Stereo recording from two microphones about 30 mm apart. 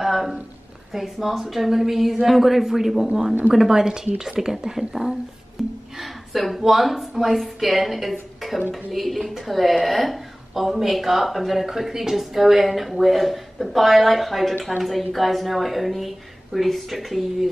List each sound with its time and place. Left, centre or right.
0.0 s a sound: centre
0.9 s a woman's voice: centre
5.6 s a sound: centre
5.9 s a woman's voice: centre
16.5 s speech: centre
16.9 s speech: centre